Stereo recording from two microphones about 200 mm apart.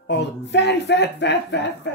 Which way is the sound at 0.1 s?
60° left (ahead or behind).